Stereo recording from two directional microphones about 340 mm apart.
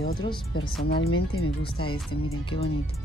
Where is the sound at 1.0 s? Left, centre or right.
Left.